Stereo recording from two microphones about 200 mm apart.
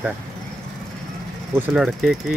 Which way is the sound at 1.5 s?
Centre (ahead or behind).